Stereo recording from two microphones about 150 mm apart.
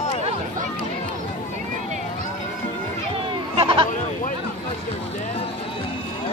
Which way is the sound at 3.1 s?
35° right (ahead or behind).